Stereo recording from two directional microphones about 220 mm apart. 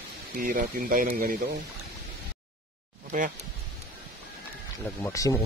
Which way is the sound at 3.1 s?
35° right (ahead or behind).